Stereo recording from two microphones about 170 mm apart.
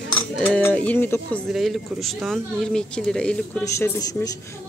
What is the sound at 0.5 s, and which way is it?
Speech, 10° left (ahead or behind).